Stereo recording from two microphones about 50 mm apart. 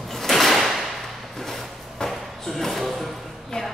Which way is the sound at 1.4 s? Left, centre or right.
Centre.